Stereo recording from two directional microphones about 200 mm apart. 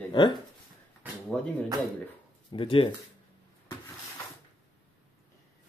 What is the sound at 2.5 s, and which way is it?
Speech, 25° left (ahead or behind).